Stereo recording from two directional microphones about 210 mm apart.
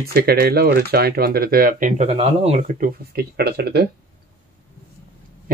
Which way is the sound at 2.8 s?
50° right (ahead or behind).